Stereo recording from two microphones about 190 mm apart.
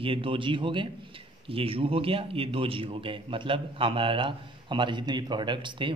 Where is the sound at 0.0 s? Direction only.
30° right (ahead or behind).